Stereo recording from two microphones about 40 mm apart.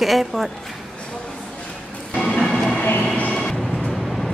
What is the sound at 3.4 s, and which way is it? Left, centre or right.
Vehicle, centre.